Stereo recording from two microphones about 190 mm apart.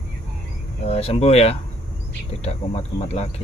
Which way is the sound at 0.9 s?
35° left (ahead or behind).